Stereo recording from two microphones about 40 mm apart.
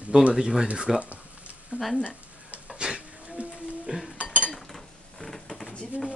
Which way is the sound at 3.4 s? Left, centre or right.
Right.